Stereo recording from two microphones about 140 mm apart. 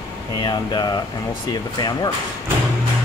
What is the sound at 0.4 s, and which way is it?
Speech, 30° left (ahead or behind).